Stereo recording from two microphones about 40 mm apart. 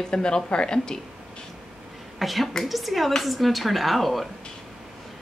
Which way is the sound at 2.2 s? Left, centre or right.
Centre.